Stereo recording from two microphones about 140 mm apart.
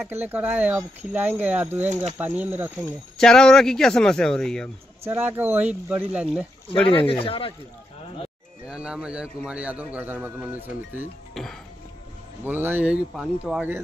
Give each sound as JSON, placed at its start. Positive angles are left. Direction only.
{"t": 0.0, "sound": "speech", "side_deg": -15}
{"t": 3.2, "sound": "speech", "side_deg": 5}
{"t": 5.0, "sound": "speech", "side_deg": -15}
{"t": 6.9, "sound": "speech", "side_deg": 40}
{"t": 8.6, "sound": "speech", "side_deg": -5}
{"t": 12.4, "sound": "speech", "side_deg": -15}